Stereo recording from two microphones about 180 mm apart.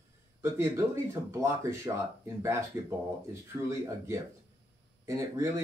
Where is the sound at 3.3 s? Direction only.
15° right (ahead or behind).